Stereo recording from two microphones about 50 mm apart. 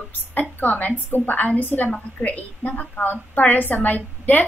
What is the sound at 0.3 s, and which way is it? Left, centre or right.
A woman's voice, left.